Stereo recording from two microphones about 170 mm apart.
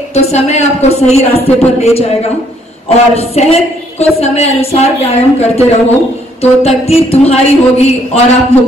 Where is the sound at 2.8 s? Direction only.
35° left (ahead or behind).